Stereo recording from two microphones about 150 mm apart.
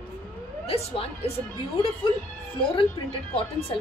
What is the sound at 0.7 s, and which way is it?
Speech, 40° left (ahead or behind).